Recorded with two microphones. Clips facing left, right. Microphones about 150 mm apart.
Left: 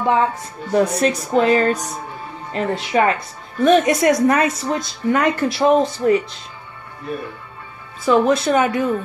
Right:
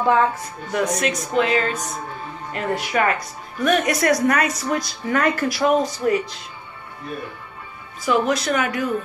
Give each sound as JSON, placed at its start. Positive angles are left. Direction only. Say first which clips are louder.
{"t": 0.7, "sound": "a woman's voice", "louder": "left 5 dB", "side_deg": 30}
{"t": 2.5, "sound": "a woman's voice", "louder": "left 4 dB", "side_deg": 25}
{"t": 8.0, "sound": "a woman's voice", "louder": "left 5 dB", "side_deg": 30}